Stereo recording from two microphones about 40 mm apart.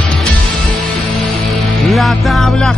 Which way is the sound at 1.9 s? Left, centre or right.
Centre.